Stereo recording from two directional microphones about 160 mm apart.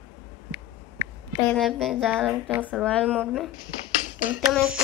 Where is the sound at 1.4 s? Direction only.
5° left (ahead or behind).